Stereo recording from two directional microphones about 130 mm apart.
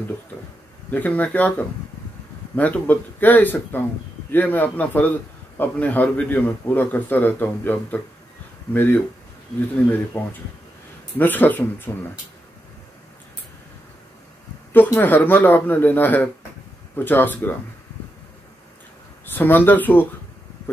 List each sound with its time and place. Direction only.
0.8 s a man's voice: 10° left (ahead or behind)
10.1 s a man's voice: 15° left (ahead or behind)
14.7 s a man's voice: 15° left (ahead or behind)
19.2 s a man's voice: 15° left (ahead or behind)